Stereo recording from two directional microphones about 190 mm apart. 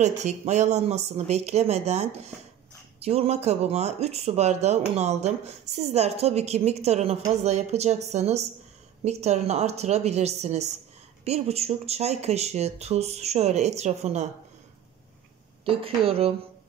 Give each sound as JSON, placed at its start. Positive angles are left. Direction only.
{"t": 0.0, "sound": "speech", "side_deg": -40}
{"t": 15.7, "sound": "speech", "side_deg": -30}